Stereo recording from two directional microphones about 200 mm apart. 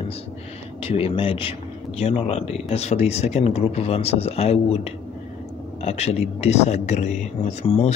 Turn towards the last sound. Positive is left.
turn(degrees=30)  # may be behind; listen again after turning